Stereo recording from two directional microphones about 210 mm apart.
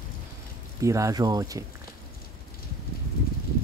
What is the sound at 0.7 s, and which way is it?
Speech, 15° right (ahead or behind).